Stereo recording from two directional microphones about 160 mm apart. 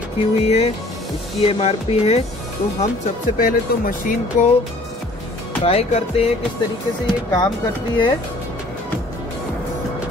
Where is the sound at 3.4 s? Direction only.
60° left (ahead or behind).